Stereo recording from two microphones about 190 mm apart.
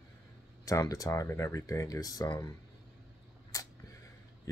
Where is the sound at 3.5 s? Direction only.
15° left (ahead or behind).